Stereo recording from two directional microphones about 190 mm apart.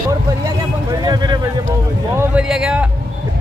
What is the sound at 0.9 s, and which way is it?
Speech, 20° right (ahead or behind).